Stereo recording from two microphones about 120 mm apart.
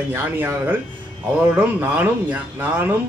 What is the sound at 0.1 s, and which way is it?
A man's voice, 20° right (ahead or behind).